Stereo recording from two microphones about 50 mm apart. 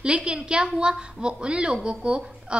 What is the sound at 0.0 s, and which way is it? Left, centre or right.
A woman's voice, right.